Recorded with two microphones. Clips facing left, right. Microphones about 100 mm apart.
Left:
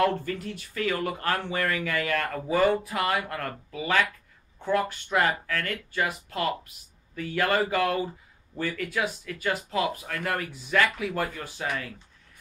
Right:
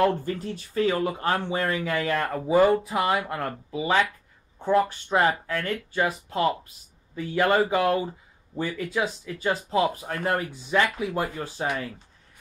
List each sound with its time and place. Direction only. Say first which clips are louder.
0.0 s speech: right 2 dB; 25° right (ahead or behind)